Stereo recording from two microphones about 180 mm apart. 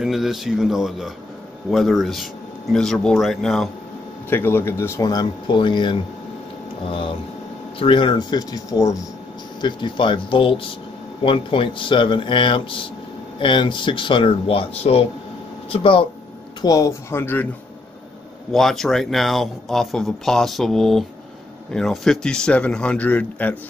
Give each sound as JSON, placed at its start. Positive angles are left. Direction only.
{"t": 0.0, "sound": "speech", "side_deg": 0}
{"t": 4.3, "sound": "speech", "side_deg": 10}
{"t": 16.6, "sound": "speech", "side_deg": 20}
{"t": 18.5, "sound": "speech", "side_deg": 0}